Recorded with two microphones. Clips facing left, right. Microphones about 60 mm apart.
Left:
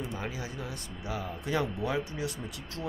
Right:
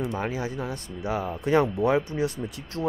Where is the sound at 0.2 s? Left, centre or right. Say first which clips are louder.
Right 8 dB; right.